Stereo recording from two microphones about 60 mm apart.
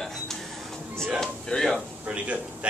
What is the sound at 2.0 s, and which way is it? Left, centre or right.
Speech, centre.